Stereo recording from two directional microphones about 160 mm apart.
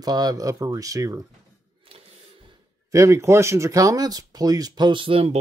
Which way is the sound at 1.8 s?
35° right (ahead or behind).